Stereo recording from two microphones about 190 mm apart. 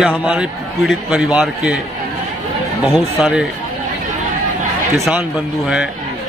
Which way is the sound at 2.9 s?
Centre (ahead or behind).